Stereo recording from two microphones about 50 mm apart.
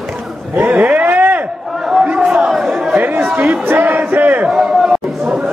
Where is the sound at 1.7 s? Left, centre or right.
Centre.